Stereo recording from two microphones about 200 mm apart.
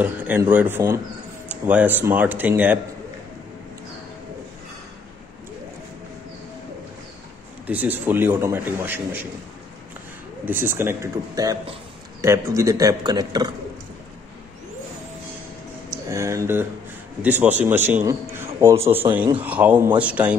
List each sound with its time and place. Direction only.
0.0 s a man's voice: 10° right (ahead or behind)
7.6 s a man's voice: 10° right (ahead or behind)
10.4 s a man's voice: 10° right (ahead or behind)
15.9 s a man's voice: 15° right (ahead or behind)